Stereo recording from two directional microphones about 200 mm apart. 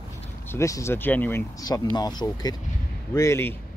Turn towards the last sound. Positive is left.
turn(degrees=15)  # may be behind; listen again after turning